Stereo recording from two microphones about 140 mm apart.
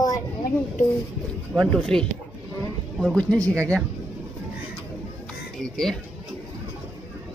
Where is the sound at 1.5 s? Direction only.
5° right (ahead or behind).